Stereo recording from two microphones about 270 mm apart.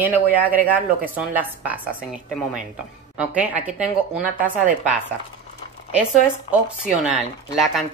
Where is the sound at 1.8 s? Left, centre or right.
Right.